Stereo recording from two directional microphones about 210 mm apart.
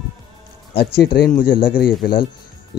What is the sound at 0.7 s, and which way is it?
Speech, 50° left (ahead or behind).